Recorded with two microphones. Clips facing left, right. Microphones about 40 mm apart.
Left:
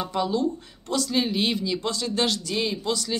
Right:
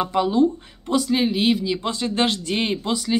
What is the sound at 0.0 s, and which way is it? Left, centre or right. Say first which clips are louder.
Speech: right 6 dB; right.